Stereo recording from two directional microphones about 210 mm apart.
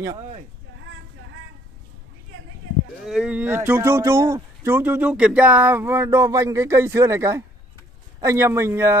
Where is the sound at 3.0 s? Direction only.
5° right (ahead or behind).